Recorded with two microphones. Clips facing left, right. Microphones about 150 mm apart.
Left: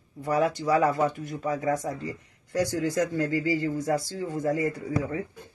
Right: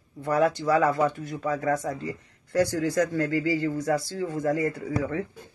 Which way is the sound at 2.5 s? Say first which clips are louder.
Right 2 dB; 15° left (ahead or behind).